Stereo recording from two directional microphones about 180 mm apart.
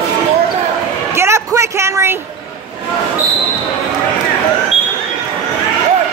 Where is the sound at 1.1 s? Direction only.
15° right (ahead or behind).